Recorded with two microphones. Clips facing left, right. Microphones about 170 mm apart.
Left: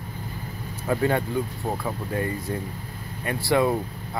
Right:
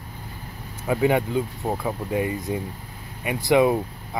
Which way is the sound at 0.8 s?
15° right (ahead or behind).